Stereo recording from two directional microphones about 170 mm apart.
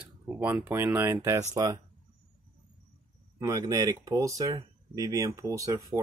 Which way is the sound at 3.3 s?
20° right (ahead or behind).